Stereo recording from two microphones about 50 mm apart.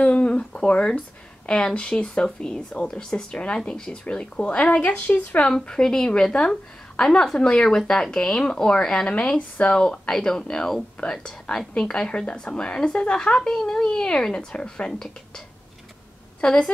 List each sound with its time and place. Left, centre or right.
0.0 s a sound: left
0.4 s speech: centre
5.7 s a woman's voice: centre
16.3 s a woman's voice: centre